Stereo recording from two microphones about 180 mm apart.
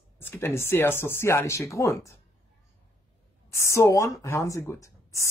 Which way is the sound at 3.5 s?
15° left (ahead or behind).